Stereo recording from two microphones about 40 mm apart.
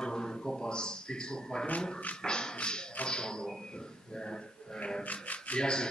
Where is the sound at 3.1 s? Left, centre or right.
Centre.